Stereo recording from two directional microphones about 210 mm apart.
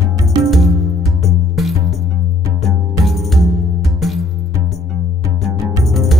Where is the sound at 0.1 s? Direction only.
15° right (ahead or behind).